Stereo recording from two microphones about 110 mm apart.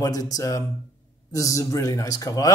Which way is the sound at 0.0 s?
35° left (ahead or behind).